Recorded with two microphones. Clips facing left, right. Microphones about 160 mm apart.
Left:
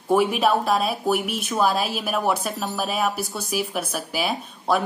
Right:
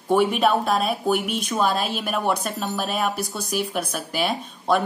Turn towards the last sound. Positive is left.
turn(degrees=5)  # may be behind; listen again after turning